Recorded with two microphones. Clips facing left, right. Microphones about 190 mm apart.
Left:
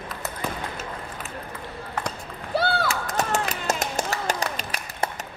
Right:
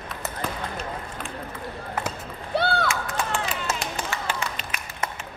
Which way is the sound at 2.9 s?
40° left (ahead or behind).